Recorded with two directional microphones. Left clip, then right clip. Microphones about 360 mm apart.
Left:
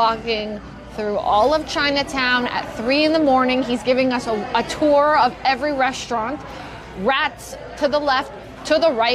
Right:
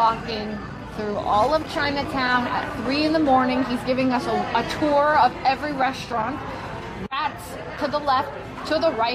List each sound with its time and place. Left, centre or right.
0.0 s a woman's voice: left
7.8 s a woman's voice: left